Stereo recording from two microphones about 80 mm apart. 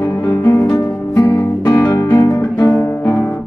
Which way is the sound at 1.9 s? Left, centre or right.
Left.